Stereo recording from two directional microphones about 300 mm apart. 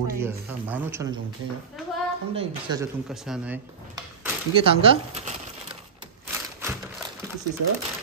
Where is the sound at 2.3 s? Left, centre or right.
Centre.